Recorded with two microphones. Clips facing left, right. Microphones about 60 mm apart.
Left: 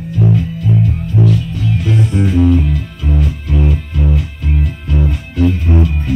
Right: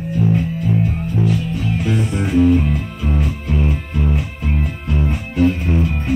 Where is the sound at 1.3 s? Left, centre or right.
Right.